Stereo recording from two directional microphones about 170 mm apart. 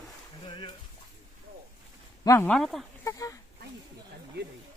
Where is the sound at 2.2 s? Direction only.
15° left (ahead or behind).